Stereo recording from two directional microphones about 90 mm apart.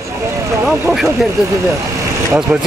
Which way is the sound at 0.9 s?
Centre (ahead or behind).